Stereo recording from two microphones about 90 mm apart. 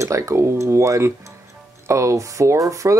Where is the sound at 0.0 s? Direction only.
35° right (ahead or behind).